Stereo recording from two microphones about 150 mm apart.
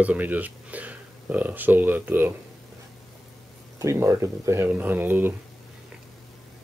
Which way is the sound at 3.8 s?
20° right (ahead or behind).